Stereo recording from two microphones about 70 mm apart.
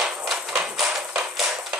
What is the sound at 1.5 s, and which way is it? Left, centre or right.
Tap, centre.